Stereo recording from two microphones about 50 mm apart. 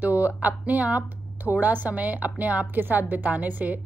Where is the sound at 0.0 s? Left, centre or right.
Right.